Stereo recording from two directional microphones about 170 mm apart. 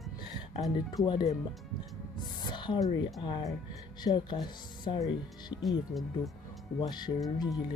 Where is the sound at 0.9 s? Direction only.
25° left (ahead or behind).